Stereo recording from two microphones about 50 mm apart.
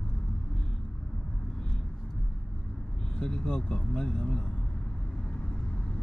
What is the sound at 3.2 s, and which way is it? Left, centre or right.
Speech, centre.